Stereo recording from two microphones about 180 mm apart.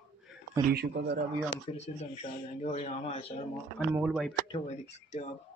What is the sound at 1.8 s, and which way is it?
Speech, 35° left (ahead or behind).